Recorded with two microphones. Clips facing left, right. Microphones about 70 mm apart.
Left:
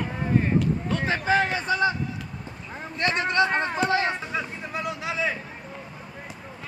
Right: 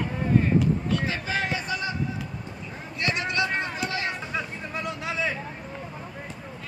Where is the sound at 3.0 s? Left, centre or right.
Left.